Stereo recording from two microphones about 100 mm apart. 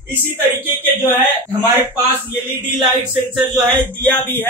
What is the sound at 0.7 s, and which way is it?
Speech, 20° right (ahead or behind).